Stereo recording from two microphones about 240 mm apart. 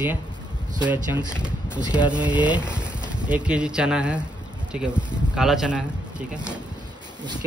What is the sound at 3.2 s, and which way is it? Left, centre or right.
Speech, centre.